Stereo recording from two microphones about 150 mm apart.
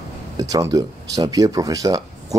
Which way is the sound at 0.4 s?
25° right (ahead or behind).